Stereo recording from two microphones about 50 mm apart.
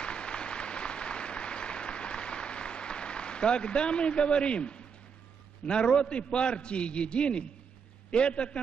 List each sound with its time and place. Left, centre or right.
0.0 s applause: centre
5.7 s a man's voice: centre